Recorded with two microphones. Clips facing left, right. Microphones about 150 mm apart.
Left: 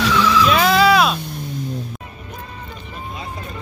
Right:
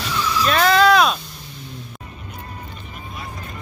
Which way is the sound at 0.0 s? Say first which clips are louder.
Left 7 dB; 90° left.